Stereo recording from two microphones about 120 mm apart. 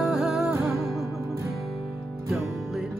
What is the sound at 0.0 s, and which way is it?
Music, centre (ahead or behind).